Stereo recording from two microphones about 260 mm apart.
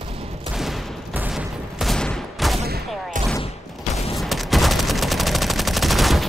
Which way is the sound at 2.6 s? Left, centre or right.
Right.